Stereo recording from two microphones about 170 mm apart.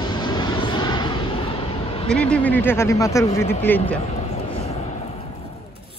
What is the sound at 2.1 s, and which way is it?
Speech, 5° left (ahead or behind).